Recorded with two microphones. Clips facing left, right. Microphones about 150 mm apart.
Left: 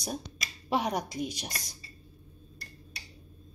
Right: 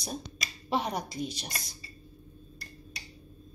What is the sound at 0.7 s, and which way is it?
Speech, 10° left (ahead or behind).